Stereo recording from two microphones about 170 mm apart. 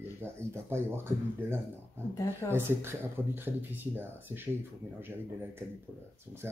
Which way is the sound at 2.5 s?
15° right (ahead or behind).